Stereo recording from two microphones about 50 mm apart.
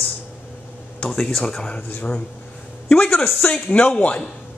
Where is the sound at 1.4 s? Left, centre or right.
Centre.